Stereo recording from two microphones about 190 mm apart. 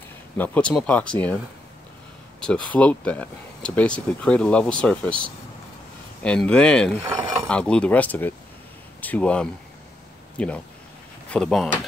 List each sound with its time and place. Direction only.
0.4 s speech: 5° left (ahead or behind)
2.4 s speech: 5° left (ahead or behind)
6.2 s speech: 5° left (ahead or behind)
7.0 s a sound: 20° right (ahead or behind)
7.4 s speech: 5° left (ahead or behind)